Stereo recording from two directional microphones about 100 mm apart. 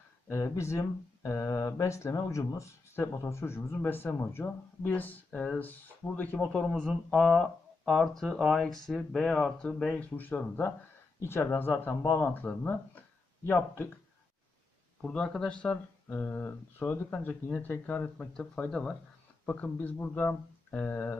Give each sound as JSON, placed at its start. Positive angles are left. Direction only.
{"t": 0.3, "sound": "speech", "side_deg": 30}
{"t": 6.4, "sound": "speech", "side_deg": 5}
{"t": 15.0, "sound": "speech", "side_deg": 5}